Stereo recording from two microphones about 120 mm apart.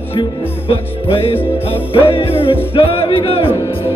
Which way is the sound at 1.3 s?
15° left (ahead or behind).